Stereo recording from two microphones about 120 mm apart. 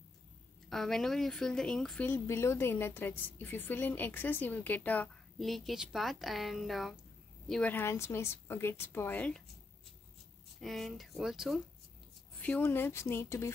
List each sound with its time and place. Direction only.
0.7 s speech: 5° left (ahead or behind)
2.0 s a woman's voice: 20° left (ahead or behind)
5.4 s a woman's voice: centre (ahead or behind)
7.7 s a woman's voice: 20° left (ahead or behind)
10.6 s speech: centre (ahead or behind)
12.4 s a woman's voice: 10° left (ahead or behind)